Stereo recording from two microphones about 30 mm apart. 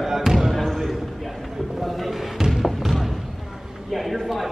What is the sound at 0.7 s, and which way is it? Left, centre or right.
Basketball bounce, centre.